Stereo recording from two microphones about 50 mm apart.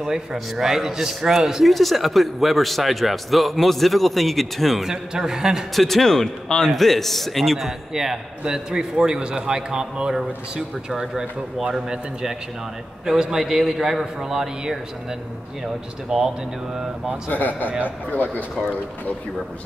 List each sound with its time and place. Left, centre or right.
0.0 s a man's voice: centre
5.8 s a man's voice: centre
16.1 s a man's voice: centre
17.3 s speech: left